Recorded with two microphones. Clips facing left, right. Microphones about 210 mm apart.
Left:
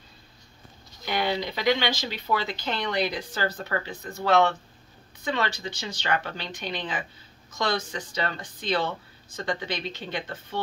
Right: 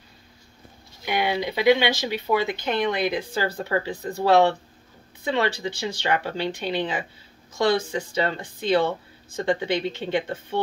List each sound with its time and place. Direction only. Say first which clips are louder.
1.0 s speech: right 3 dB; 20° right (ahead or behind)